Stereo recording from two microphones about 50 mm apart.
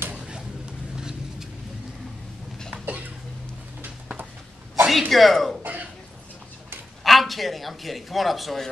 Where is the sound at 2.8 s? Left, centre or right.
Right.